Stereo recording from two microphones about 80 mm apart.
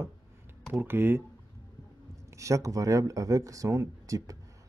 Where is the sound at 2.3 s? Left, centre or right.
Right.